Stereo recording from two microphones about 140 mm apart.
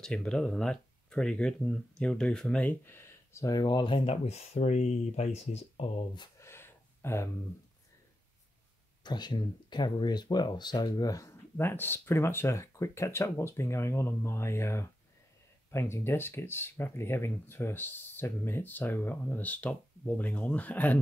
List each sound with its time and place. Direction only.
0.0 s speech: 5° left (ahead or behind); by 6.0 s 50° left (ahead or behind)
6.1 s speech: 30° left (ahead or behind)
6.4 s a sound: 15° left (ahead or behind)
9.0 s speech: 30° left (ahead or behind); by 21.0 s 10° left (ahead or behind)